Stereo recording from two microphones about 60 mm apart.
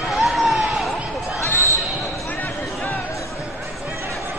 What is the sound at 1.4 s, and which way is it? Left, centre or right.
Basketball bounce, left.